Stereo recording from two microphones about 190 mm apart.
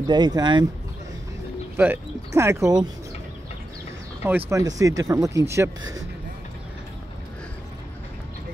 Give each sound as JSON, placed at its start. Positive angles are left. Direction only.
{"t": 0.1, "sound": "speech", "side_deg": -20}
{"t": 1.8, "sound": "speech", "side_deg": -10}
{"t": 4.2, "sound": "speech", "side_deg": -10}